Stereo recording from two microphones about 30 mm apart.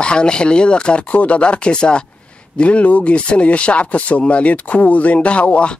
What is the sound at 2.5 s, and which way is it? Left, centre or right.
Speech, left.